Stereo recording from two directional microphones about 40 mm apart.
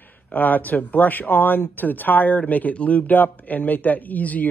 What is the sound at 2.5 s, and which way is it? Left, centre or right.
Speech, left.